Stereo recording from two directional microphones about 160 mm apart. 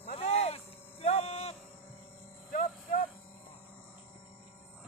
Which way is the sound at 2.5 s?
60° left (ahead or behind).